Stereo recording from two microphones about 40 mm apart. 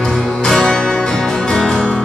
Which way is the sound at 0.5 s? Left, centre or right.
Centre.